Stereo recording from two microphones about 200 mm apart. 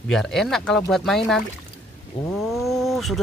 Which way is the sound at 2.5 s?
Centre (ahead or behind).